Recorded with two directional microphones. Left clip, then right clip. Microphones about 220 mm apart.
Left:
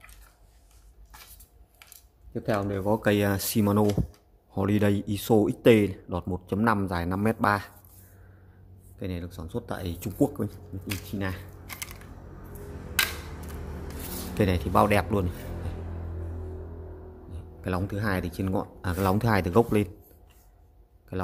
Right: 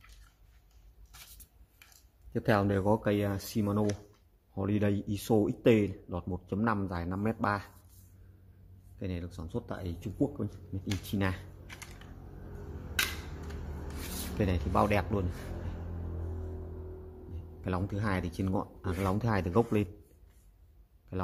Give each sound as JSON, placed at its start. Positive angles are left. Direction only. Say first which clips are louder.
{"t": 2.3, "sound": "speech", "louder": "even", "side_deg": -25}
{"t": 2.9, "sound": "speech", "louder": "left 5 dB", "side_deg": 5}
{"t": 8.9, "sound": "speech", "louder": "left 4 dB", "side_deg": 0}
{"t": 10.9, "sound": "speech", "louder": "left 1 dB", "side_deg": -15}
{"t": 14.4, "sound": "speech", "louder": "left 7 dB", "side_deg": 5}
{"t": 17.3, "sound": "speech", "louder": "left 5 dB", "side_deg": 0}
{"t": 21.1, "sound": "speech", "louder": "left 4 dB", "side_deg": 0}